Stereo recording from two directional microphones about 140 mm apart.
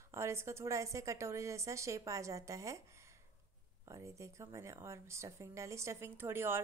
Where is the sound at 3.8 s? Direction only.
25° right (ahead or behind).